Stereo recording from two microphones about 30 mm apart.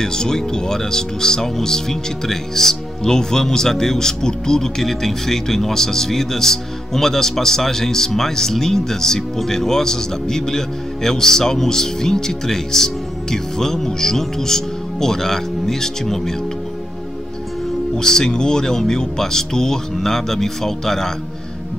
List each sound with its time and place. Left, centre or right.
0.0 s speech: left
17.9 s speech: centre